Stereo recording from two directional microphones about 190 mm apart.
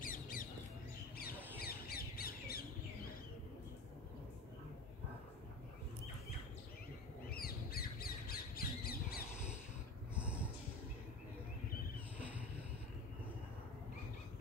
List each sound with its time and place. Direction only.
0.0 s squawk: 45° left (ahead or behind)
1.6 s squawk: 50° left (ahead or behind)
7.2 s squawk: 50° left (ahead or behind)
10.1 s snort: 5° right (ahead or behind)
12.2 s a sound: 10° right (ahead or behind)